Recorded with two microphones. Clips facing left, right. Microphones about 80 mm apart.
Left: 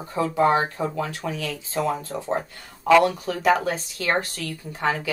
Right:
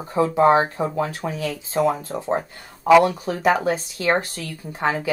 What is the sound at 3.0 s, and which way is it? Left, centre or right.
Speech, right.